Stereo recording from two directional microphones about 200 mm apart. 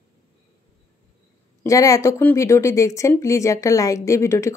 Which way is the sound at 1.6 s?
15° left (ahead or behind).